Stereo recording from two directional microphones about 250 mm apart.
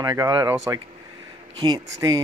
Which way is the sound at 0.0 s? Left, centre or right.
Centre.